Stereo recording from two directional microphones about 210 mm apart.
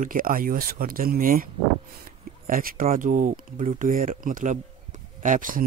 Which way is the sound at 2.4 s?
45° right (ahead or behind).